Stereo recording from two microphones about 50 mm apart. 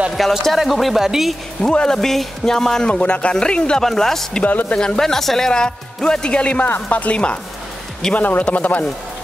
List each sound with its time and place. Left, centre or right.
0.1 s speech: centre
1.6 s speech: centre
2.9 s speech: left
3.8 s speech: centre
4.5 s a man's voice: left
4.7 s a man's voice: centre; by 8.8 s left